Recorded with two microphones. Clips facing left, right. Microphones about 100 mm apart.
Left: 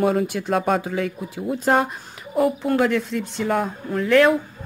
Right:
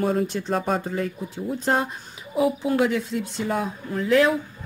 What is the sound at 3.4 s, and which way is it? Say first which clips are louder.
Speech: left 5 dB; 55° left (ahead or behind).